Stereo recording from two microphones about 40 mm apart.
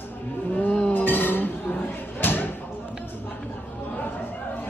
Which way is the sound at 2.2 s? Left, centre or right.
Left.